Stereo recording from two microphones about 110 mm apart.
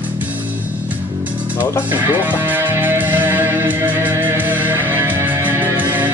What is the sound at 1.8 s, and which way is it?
Music, 15° right (ahead or behind).